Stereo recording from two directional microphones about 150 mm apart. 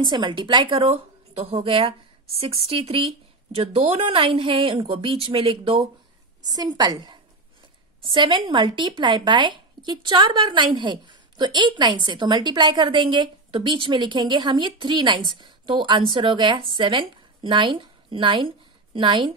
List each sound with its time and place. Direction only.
0.0 s a woman's voice: 30° right (ahead or behind)